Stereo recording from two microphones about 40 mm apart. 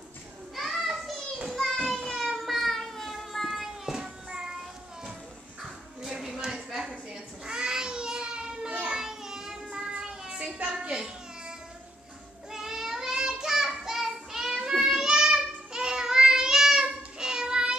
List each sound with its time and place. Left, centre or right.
0.6 s children playing: centre
2.1 s a sound: centre
6.0 s a sound: centre
8.9 s child singing: centre
10.7 s babbling: centre
12.4 s child singing: centre